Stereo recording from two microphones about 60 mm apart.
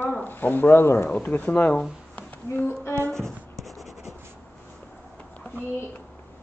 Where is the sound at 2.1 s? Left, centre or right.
Left.